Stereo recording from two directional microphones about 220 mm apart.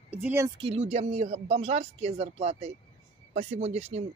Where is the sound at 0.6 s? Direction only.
25° right (ahead or behind).